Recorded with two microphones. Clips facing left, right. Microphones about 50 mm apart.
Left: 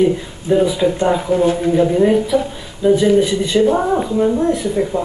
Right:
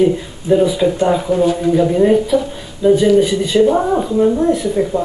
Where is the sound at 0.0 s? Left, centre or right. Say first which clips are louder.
Right 1 dB; centre.